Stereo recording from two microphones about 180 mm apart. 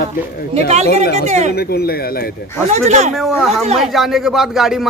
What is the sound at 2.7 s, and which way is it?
Speech, 40° right (ahead or behind).